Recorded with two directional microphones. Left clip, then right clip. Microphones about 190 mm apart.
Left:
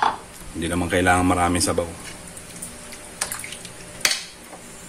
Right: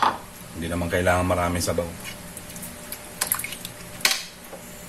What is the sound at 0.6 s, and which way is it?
A man's voice, 45° left (ahead or behind).